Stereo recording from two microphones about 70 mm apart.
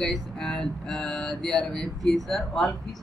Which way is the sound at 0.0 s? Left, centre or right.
Centre.